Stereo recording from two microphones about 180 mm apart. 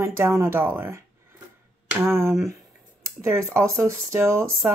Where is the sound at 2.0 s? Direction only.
15° right (ahead or behind).